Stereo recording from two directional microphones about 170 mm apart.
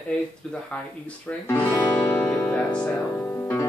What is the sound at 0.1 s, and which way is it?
Speech, 5° left (ahead or behind).